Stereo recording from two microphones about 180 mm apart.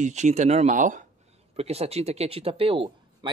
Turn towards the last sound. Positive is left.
turn(degrees=-30)  # may be behind; listen again after turning